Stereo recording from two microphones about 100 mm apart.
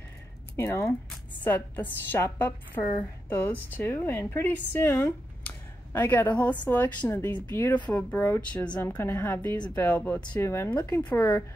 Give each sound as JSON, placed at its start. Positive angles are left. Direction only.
{"t": 0.6, "sound": "a woman's voice", "side_deg": 25}
{"t": 11.0, "sound": "speech", "side_deg": 15}